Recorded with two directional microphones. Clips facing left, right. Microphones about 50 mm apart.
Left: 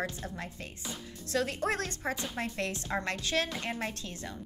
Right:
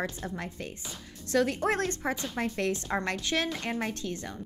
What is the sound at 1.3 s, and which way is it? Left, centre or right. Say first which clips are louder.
A woman's voice: right 4 dB; right.